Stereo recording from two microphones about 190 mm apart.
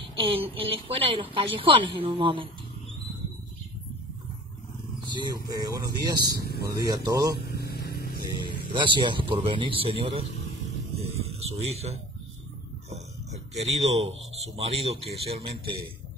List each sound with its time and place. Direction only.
0.2 s a man's voice: 30° right (ahead or behind)
5.2 s a man's voice: 20° right (ahead or behind)
6.3 s speech: 55° left (ahead or behind)
6.7 s a man's voice: 20° right (ahead or behind)
7.3 s music: 55° left (ahead or behind)
8.7 s a man's voice: 25° right (ahead or behind)
11.2 s a man's voice: 35° right (ahead or behind)
13.6 s speech: 35° right (ahead or behind)